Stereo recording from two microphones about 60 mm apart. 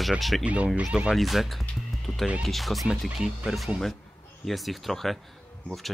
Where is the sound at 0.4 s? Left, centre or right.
Right.